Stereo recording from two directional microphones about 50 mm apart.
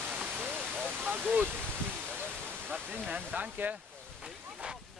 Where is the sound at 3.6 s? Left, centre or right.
Right.